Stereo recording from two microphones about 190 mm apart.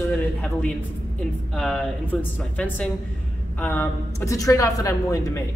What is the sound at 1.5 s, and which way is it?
A woman's voice, 5° left (ahead or behind).